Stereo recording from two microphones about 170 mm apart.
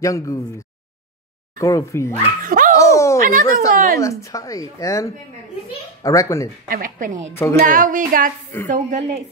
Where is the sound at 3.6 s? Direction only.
50° right (ahead or behind).